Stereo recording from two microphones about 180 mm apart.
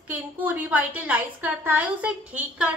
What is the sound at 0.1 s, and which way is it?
A woman's voice, 10° right (ahead or behind).